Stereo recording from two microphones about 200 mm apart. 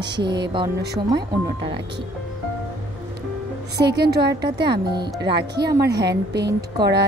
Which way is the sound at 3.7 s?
55° right (ahead or behind).